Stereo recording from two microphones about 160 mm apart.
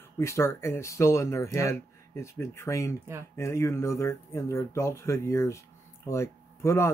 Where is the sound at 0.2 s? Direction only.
15° left (ahead or behind).